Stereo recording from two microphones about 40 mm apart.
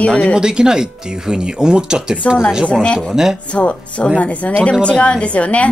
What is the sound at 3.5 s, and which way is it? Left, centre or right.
A woman's voice, left.